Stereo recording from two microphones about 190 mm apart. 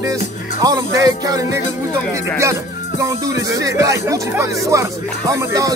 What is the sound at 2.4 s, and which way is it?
Speech, 15° right (ahead or behind).